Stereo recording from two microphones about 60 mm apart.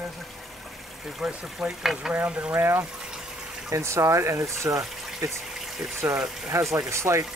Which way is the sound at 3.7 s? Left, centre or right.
Right.